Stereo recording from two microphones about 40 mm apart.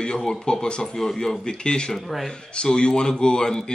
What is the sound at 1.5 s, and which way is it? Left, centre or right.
Speech, left.